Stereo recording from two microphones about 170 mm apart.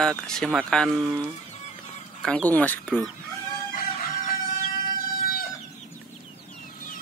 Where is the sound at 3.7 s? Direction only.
45° left (ahead or behind).